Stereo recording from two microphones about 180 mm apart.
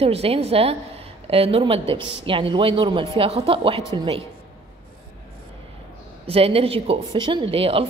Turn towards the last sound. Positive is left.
turn(degrees=-30)  # may be behind; listen again after turning